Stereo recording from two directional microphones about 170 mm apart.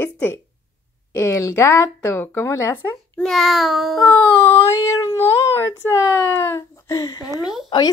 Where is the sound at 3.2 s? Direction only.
Centre (ahead or behind).